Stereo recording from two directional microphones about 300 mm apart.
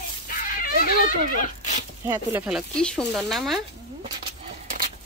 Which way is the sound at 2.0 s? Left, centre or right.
Centre.